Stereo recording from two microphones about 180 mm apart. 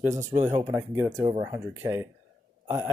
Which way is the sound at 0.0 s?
15° right (ahead or behind).